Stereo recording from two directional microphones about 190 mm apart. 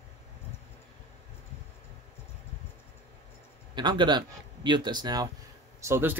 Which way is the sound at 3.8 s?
25° right (ahead or behind).